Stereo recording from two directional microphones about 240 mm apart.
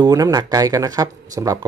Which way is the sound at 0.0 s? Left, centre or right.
Centre.